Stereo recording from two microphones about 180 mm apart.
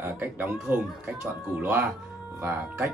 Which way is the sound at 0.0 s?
10° right (ahead or behind).